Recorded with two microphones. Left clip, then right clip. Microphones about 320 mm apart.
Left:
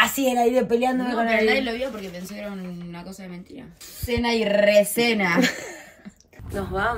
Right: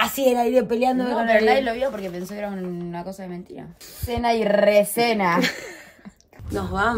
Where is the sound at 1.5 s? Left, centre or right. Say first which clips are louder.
Right 3 dB; right.